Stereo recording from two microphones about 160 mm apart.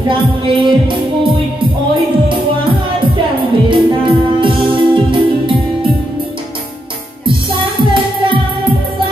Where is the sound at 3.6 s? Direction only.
30° right (ahead or behind).